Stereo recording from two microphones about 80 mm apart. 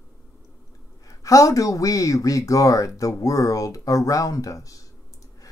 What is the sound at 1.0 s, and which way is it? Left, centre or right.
Speech, left.